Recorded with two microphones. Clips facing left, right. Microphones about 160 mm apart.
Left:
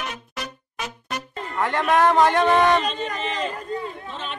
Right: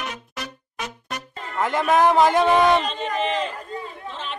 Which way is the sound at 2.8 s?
40° left (ahead or behind).